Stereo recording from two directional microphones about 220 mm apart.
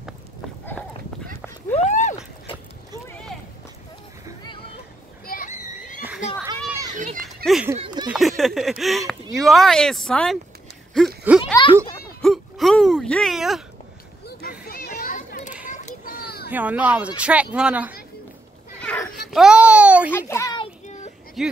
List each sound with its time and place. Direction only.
1.9 s horse: 35° left (ahead or behind)
5.2 s children playing: 40° left (ahead or behind)
7.4 s speech: centre (ahead or behind)
7.8 s a sound: 20° right (ahead or behind)
8.1 s speech: centre (ahead or behind)
11.2 s a sound: 5° right (ahead or behind)
14.6 s children playing: 45° left (ahead or behind)
16.4 s speech: 5° right (ahead or behind)
18.8 s cat: 5° left (ahead or behind)
20.1 s a child's voice: 10° left (ahead or behind)
20.6 s child singing: 30° left (ahead or behind)
21.4 s speech: centre (ahead or behind)